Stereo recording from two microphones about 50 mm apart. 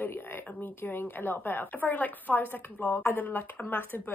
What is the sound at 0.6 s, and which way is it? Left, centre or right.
A woman's voice, left.